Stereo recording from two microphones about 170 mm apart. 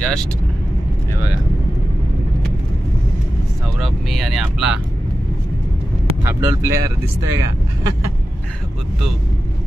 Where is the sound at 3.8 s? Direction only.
Centre (ahead or behind).